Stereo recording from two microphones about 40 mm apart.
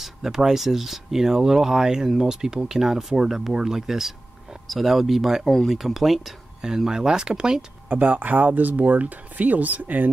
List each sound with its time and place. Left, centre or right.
0.0 s speech: centre
6.9 s speech: centre
7.9 s speech: right